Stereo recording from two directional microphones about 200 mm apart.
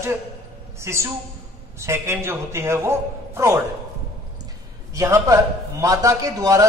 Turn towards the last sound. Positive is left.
turn(degrees=-15)  # may be behind; listen again after turning